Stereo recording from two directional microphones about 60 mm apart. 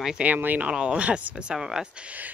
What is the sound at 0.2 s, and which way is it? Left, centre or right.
Speech, right.